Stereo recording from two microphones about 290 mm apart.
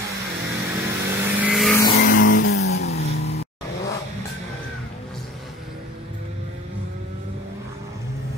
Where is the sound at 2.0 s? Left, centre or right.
Left.